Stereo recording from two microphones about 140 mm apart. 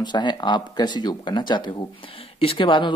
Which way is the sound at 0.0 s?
30° left (ahead or behind).